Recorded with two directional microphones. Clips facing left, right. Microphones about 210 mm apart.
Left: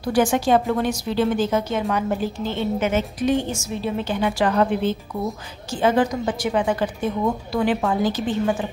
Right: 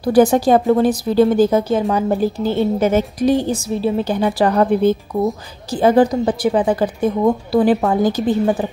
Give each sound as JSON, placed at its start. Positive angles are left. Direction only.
{"t": 0.1, "sound": "a woman's voice", "side_deg": -35}